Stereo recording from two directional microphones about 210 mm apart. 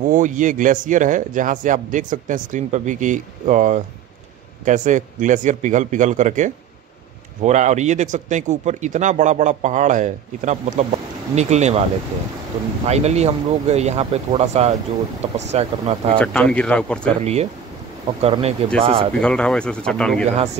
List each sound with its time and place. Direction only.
0.0 s speech: 40° right (ahead or behind)
12.8 s speech: 30° right (ahead or behind)
16.2 s speech: 5° left (ahead or behind)
17.2 s speech: 30° right (ahead or behind)
19.1 s speech: 5° left (ahead or behind)